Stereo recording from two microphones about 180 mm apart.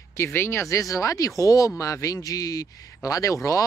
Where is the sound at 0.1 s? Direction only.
15° left (ahead or behind).